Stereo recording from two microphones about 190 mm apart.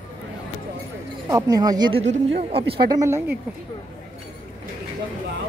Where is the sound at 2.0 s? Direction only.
35° right (ahead or behind).